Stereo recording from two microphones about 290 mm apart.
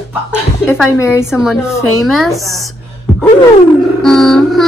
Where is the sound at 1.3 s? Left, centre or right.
Centre.